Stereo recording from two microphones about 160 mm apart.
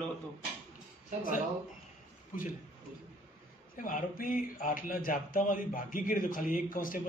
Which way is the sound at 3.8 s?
60° left (ahead or behind).